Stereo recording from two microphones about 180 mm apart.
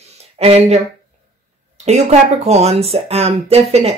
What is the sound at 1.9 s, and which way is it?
Speech, 35° right (ahead or behind).